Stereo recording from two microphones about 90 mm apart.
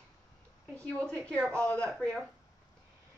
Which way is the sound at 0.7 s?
15° left (ahead or behind).